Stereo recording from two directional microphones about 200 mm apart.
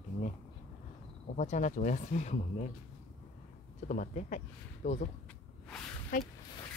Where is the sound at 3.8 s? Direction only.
40° left (ahead or behind).